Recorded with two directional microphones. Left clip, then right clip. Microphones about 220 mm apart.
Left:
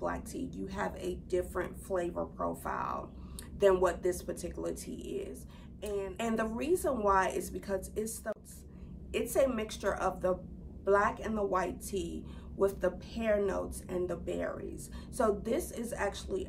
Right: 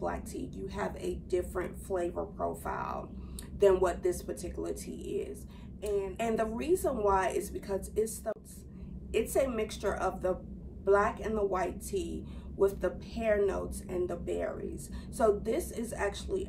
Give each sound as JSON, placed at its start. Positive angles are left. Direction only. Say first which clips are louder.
{"t": 0.0, "sound": "speech", "louder": "even", "side_deg": 15}